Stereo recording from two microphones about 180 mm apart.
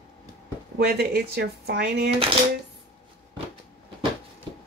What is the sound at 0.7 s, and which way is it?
Speech, 65° right (ahead or behind).